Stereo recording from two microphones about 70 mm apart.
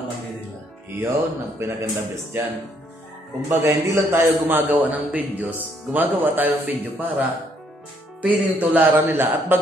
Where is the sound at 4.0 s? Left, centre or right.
Right.